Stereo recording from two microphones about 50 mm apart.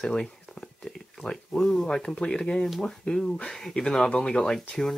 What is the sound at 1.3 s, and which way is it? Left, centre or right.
Speech, centre.